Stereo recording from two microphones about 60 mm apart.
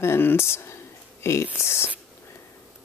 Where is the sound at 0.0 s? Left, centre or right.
Left.